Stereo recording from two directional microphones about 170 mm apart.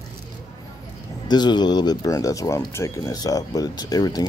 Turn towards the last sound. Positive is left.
turn(degrees=20)  # may be behind; listen again after turning